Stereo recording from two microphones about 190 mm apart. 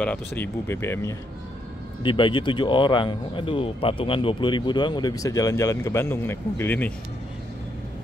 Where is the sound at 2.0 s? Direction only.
25° left (ahead or behind).